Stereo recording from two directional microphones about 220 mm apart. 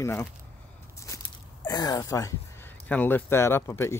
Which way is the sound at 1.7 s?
15° left (ahead or behind).